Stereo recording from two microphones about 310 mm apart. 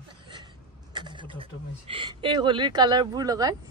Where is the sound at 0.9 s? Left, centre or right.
Centre.